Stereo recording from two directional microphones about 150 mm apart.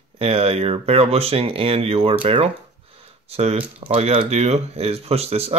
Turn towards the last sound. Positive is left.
turn(degrees=-45)  # may be behind; listen again after turning